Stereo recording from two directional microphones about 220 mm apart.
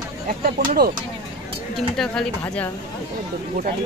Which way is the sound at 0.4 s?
45° right (ahead or behind).